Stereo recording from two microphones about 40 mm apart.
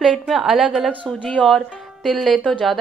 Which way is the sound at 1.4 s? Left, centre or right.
Centre.